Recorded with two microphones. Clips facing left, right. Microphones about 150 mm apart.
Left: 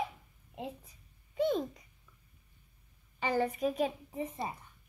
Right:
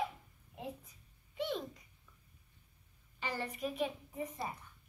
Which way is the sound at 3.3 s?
45° left (ahead or behind).